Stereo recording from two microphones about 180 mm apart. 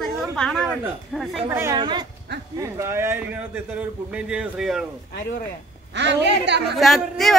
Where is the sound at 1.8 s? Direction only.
25° right (ahead or behind); by 4.8 s 5° right (ahead or behind).